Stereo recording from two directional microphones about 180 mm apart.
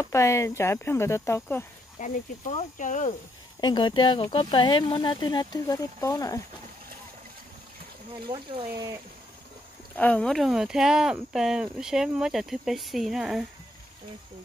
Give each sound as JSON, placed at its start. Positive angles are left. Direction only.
{"t": 0.0, "sound": "speech", "side_deg": 15}
{"t": 2.0, "sound": "speech", "side_deg": 45}
{"t": 3.6, "sound": "speech", "side_deg": 25}
{"t": 8.3, "sound": "speech", "side_deg": -25}
{"t": 9.9, "sound": "speech", "side_deg": 5}